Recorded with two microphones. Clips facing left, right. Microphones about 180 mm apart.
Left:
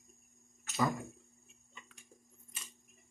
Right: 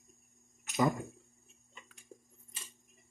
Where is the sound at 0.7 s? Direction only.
15° right (ahead or behind).